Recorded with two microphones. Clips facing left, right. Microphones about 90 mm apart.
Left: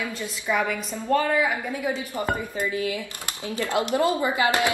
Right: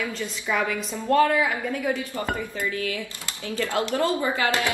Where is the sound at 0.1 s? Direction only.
10° left (ahead or behind).